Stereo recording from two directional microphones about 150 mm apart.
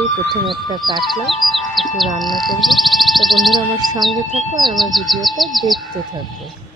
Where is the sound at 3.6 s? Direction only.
30° right (ahead or behind).